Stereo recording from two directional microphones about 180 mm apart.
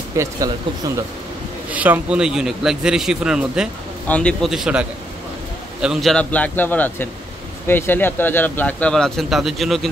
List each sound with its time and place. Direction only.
0.1 s a man's voice: 20° right (ahead or behind); by 9.8 s centre (ahead or behind)